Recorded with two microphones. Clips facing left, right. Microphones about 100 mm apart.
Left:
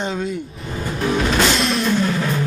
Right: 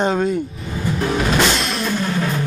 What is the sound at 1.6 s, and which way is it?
Music, centre (ahead or behind).